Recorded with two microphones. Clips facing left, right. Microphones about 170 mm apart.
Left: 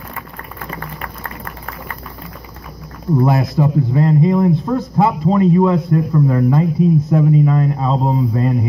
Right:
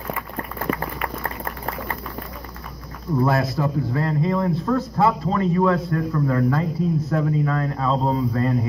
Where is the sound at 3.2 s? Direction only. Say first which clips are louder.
Left 4 dB; 15° left (ahead or behind).